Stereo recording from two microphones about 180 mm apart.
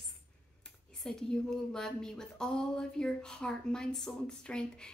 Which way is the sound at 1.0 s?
5° left (ahead or behind).